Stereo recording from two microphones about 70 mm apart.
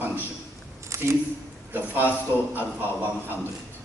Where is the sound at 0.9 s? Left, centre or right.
Right.